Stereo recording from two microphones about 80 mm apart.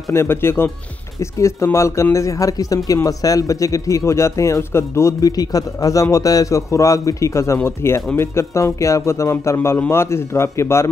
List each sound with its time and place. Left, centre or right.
0.1 s speech: left
5.2 s a man's voice: left